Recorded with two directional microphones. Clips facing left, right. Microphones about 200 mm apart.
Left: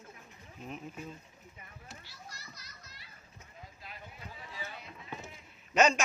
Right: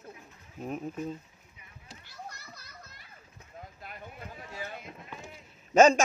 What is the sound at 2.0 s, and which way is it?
Children playing, 50° right (ahead or behind).